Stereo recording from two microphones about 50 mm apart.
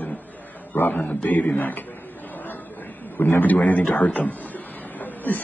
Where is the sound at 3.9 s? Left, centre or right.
Left.